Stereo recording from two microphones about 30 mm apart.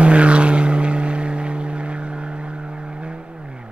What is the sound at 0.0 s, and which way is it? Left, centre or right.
Vehicle, right.